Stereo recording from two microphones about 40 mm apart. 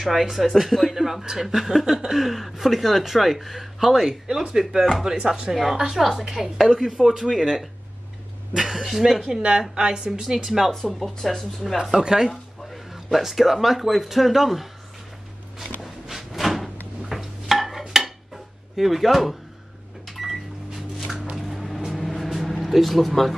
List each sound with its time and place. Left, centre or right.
0.0 s speech: centre; by 5.5 s right
5.5 s speech: centre
9.6 s speech: centre
10.7 s speech: centre
12.0 s speech: centre
13.1 s speech: centre
15.8 s a sound: centre
17.8 s dishes: centre
20.1 s microwave oven: centre
21.4 s vehicle: centre